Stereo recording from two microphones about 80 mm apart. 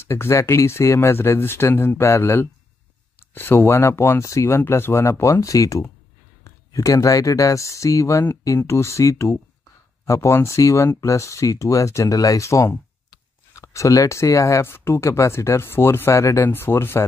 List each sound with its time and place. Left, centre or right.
0.0 s speech: left
4.6 s speech: left